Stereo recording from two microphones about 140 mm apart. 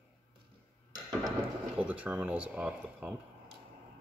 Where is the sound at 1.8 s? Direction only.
10° right (ahead or behind).